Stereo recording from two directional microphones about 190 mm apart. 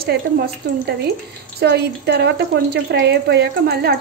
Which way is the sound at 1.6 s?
60° right (ahead or behind).